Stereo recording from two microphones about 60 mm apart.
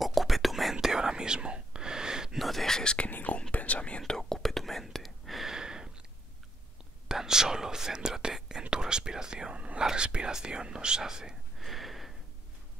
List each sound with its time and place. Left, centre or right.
0.0 s whispering: centre
2.4 s whispering: centre
3.1 s whispering: left
4.1 s whispering: centre
7.1 s whispering: centre
11.6 s a sound: centre